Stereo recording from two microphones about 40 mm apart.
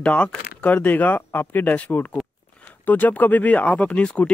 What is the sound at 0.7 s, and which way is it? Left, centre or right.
Speech, left.